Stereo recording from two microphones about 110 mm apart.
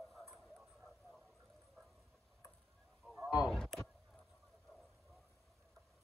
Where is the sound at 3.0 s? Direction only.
5° right (ahead or behind).